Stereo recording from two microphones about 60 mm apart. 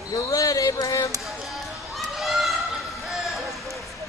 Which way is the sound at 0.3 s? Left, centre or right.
Left.